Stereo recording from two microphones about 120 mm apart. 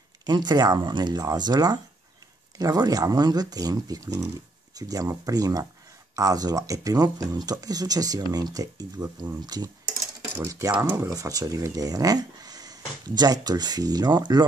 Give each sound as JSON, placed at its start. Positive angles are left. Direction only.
{"t": 0.2, "sound": "speech", "side_deg": -35}